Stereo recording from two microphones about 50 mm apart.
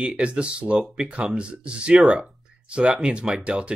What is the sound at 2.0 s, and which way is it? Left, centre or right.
Speech, centre.